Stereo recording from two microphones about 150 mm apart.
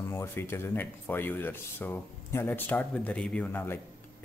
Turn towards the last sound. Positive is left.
turn(degrees=15)  # may be behind; listen again after turning